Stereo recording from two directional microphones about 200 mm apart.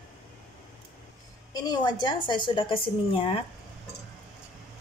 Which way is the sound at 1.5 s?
20° left (ahead or behind).